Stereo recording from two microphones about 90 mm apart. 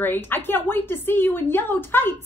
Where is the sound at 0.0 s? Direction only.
20° left (ahead or behind).